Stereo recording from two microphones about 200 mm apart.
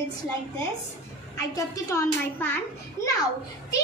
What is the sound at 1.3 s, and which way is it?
A woman's voice, 15° left (ahead or behind).